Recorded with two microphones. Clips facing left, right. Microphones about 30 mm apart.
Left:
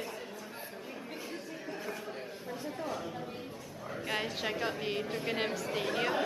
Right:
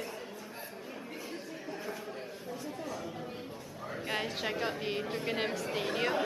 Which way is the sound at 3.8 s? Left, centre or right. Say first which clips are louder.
Even; centre.